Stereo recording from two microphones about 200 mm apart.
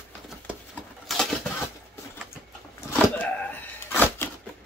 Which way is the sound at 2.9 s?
10° left (ahead or behind).